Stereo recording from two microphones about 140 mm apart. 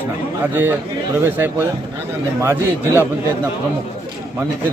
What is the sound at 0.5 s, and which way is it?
Speech, 15° right (ahead or behind).